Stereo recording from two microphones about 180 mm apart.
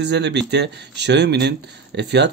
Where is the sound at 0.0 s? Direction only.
75° right (ahead or behind).